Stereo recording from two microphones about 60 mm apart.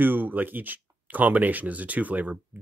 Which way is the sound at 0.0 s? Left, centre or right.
Right.